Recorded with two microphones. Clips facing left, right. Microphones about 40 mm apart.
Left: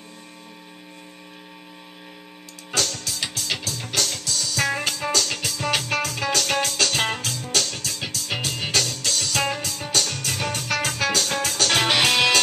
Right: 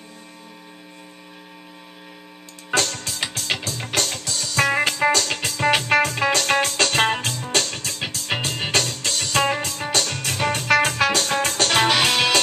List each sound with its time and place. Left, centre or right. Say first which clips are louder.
2.7 s music: right 3 dB; right
11.9 s music: even; centre